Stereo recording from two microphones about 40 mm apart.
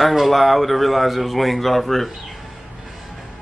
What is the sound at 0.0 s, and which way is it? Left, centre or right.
Speech, centre.